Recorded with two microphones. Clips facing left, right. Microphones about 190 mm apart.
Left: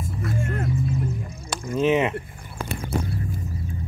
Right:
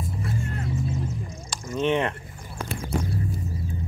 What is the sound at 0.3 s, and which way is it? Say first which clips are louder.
Vehicle: left 6 dB; 50° left (ahead or behind).